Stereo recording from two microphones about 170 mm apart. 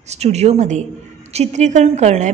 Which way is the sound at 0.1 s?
40° right (ahead or behind).